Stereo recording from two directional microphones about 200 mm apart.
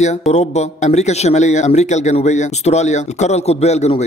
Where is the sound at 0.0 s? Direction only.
35° left (ahead or behind).